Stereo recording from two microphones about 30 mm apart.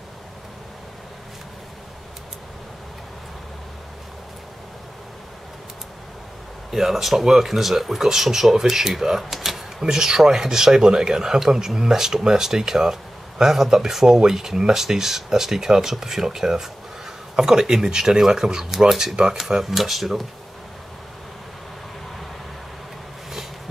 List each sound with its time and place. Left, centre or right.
6.7 s speech: centre
9.8 s speech: right